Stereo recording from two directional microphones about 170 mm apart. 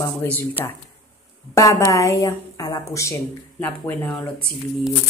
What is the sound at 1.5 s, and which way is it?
A woman's voice, 20° left (ahead or behind).